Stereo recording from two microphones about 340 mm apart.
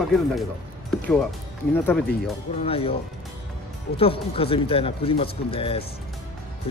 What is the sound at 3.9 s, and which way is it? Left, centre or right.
Speech, centre.